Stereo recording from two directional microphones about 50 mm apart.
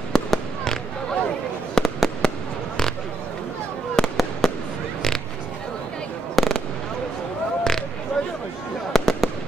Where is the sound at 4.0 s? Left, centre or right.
Centre.